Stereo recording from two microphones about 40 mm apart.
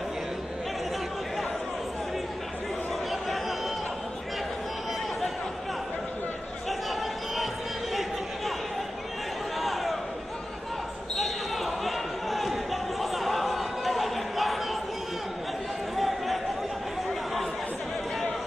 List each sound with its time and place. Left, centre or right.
3.1 s chatter: centre
6.9 s basketball bounce: centre
7.9 s chatter: centre
9.6 s a sound: centre
11.1 s basketball bounce: centre
13.0 s chatter: centre
17.1 s chatter: centre